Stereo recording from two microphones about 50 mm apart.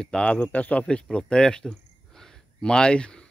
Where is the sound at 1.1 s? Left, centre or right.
Centre.